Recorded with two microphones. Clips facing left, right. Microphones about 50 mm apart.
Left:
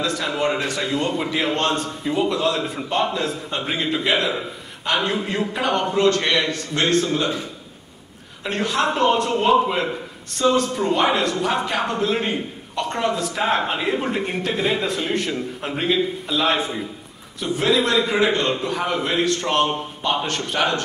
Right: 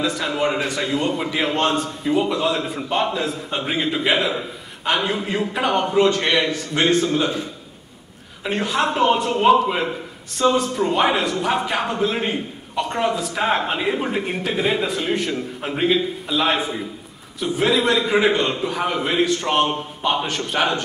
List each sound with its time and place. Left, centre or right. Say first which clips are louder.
0.0 s a man's voice: right 1 dB; centre
8.5 s a man's voice: even; centre